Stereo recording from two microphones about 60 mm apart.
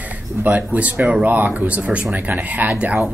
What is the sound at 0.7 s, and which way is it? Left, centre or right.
Speech, right.